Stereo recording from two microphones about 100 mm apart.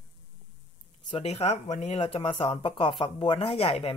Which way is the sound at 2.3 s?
60° left (ahead or behind).